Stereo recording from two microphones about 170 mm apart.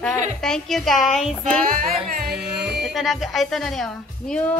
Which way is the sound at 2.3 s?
5° right (ahead or behind).